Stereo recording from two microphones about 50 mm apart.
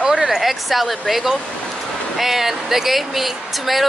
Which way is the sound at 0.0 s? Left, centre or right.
Centre.